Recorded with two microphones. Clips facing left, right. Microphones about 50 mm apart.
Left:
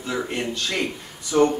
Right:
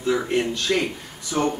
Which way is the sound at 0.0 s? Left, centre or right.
Centre.